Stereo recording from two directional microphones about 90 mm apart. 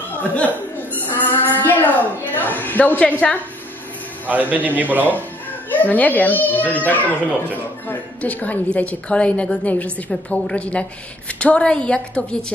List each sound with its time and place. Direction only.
0.9 s a sound: 20° left (ahead or behind)
4.3 s a man's voice: 20° right (ahead or behind)
5.7 s a woman's voice: 20° left (ahead or behind)